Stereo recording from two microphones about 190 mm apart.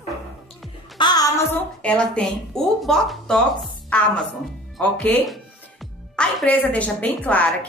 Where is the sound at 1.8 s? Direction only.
5° left (ahead or behind).